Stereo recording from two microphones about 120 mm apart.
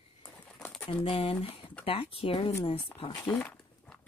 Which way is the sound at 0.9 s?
50° left (ahead or behind).